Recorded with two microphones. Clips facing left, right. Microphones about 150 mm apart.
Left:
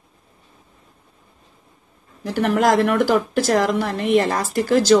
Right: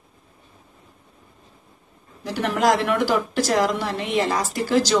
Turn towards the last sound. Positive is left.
turn(degrees=50)  # may be behind; listen again after turning